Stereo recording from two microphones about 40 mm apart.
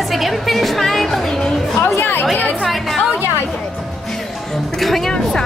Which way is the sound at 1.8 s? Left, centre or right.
Left.